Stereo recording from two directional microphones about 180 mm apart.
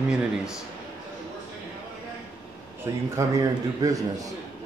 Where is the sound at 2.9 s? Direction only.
15° right (ahead or behind).